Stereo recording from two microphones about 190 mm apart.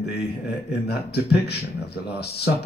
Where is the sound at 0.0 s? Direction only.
55° left (ahead or behind).